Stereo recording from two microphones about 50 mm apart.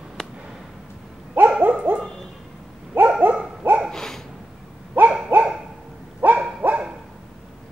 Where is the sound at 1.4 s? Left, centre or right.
Right.